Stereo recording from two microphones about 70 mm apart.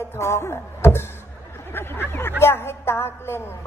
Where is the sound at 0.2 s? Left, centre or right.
Left.